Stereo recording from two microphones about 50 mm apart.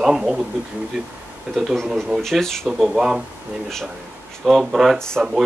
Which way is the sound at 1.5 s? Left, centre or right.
Centre.